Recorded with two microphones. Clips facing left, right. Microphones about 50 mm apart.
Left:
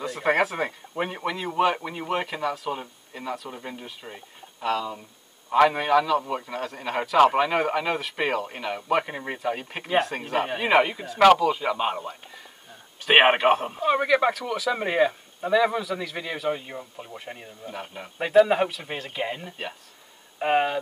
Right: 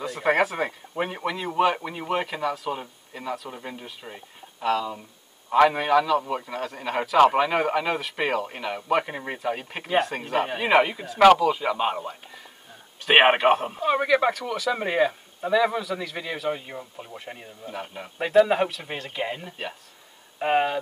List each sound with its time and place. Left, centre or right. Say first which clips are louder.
0.0 s a man's voice: right 1 dB; centre